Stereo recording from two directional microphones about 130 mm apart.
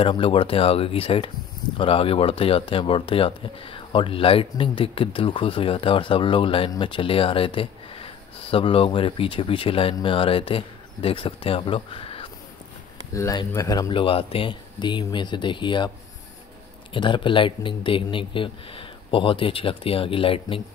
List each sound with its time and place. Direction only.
0.0 s speech: 45° left (ahead or behind)
13.1 s speech: 25° left (ahead or behind)
16.9 s speech: 40° left (ahead or behind)